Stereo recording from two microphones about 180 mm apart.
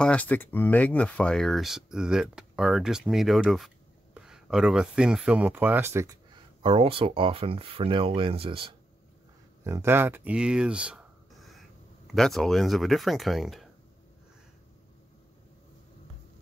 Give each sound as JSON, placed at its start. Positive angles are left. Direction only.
{"t": 0.0, "sound": "speech", "side_deg": 5}
{"t": 6.3, "sound": "speech", "side_deg": -30}
{"t": 9.7, "sound": "speech", "side_deg": -15}
{"t": 12.1, "sound": "speech", "side_deg": 0}